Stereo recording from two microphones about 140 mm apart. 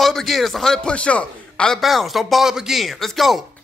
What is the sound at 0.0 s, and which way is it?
Speech, centre (ahead or behind).